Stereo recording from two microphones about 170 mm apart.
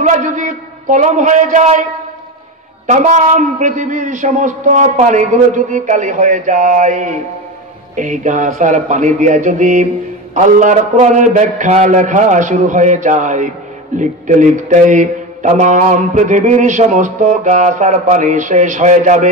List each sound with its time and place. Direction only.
0.0 s speech: 45° right (ahead or behind)
2.9 s speech: 45° right (ahead or behind)